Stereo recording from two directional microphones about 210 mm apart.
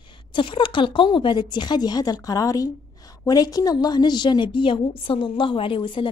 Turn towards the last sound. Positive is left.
turn(degrees=25)  # may be behind; listen again after turning